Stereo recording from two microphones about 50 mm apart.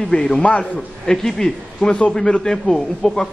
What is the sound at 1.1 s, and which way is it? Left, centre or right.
Speech, centre.